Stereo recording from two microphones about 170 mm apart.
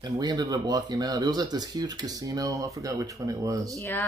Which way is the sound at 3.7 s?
15° left (ahead or behind).